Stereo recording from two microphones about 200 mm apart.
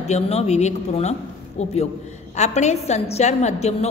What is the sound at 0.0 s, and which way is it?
A woman's voice, 30° left (ahead or behind).